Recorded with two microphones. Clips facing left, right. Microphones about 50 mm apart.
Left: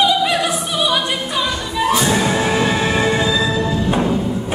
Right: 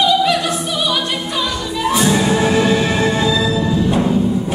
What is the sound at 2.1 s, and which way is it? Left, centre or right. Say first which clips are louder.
Music: right 2 dB; centre.